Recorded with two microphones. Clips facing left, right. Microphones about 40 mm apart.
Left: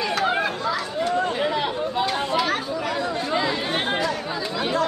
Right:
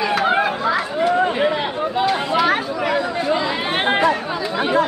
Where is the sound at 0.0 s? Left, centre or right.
Centre.